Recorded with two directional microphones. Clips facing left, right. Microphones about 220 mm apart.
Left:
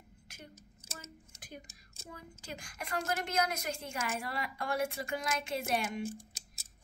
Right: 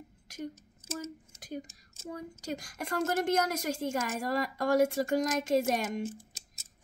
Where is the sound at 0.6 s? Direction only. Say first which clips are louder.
Right 13 dB; 15° left (ahead or behind).